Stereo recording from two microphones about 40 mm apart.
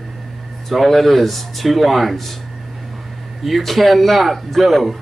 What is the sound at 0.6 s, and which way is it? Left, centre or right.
Speech, centre.